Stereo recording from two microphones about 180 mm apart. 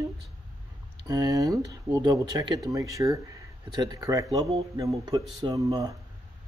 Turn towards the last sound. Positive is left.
turn(degrees=-20)  # may be behind; listen again after turning